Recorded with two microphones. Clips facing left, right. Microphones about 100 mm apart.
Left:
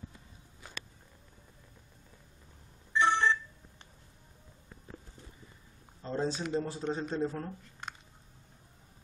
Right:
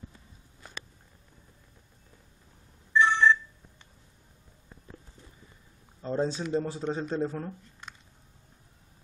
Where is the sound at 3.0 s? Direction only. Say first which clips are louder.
Right 4 dB; 50° left (ahead or behind).